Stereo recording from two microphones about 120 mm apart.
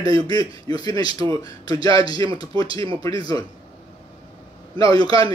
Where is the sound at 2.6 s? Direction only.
50° right (ahead or behind).